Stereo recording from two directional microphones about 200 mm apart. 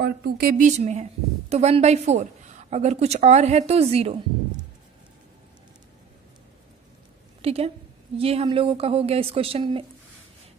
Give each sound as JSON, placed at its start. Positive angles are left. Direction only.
{"t": 0.0, "sound": "a woman's voice", "side_deg": -50}
{"t": 7.4, "sound": "a woman's voice", "side_deg": -30}